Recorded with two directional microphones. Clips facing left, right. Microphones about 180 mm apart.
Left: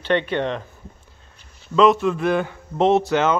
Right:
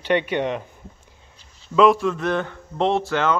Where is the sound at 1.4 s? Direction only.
60° left (ahead or behind).